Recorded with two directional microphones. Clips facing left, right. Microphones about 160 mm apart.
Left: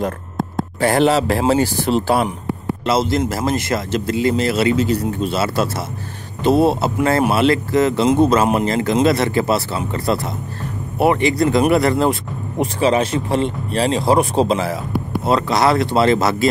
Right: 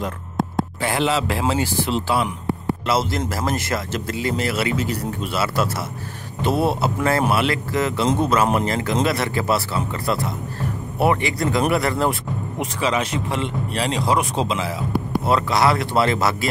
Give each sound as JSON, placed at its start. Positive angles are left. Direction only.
{"t": 0.7, "sound": "speech", "side_deg": 45}
{"t": 2.8, "sound": "speech", "side_deg": 20}
{"t": 12.5, "sound": "speech", "side_deg": 30}
{"t": 15.2, "sound": "speech", "side_deg": 25}